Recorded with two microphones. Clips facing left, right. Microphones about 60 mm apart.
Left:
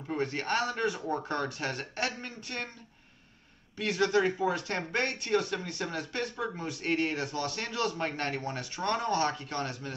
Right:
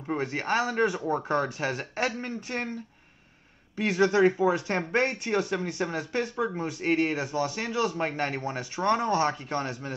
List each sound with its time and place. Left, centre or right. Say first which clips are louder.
0.1 s speech: right 3 dB; right
3.7 s speech: right 4 dB; right